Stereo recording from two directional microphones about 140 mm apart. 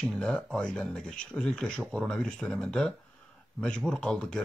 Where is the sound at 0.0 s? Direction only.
5° left (ahead or behind).